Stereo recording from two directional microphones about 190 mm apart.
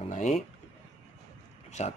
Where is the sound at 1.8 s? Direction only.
35° left (ahead or behind).